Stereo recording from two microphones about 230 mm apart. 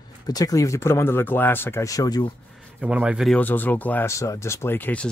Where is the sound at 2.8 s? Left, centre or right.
Centre.